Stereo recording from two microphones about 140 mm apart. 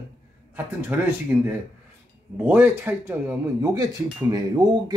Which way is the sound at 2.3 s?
15° right (ahead or behind).